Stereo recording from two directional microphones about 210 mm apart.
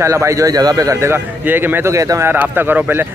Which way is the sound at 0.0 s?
15° right (ahead or behind).